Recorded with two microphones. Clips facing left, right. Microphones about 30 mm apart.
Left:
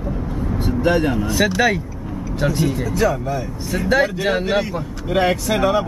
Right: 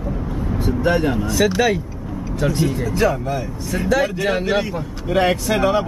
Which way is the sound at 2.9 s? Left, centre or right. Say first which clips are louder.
Right 1 dB; right.